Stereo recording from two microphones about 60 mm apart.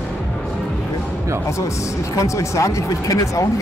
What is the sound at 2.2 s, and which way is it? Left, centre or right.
Speech, left.